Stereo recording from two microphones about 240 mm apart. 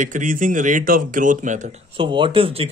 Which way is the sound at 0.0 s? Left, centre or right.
Right.